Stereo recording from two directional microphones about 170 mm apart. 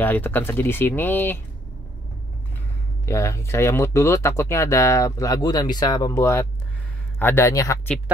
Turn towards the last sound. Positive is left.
turn(degrees=20)  # may be behind; listen again after turning